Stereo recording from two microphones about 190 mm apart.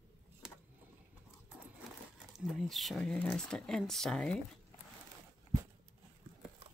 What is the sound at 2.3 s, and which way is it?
Speech, centre (ahead or behind).